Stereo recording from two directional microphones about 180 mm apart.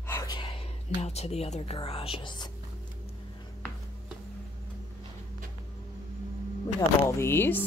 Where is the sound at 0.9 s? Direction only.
35° left (ahead or behind).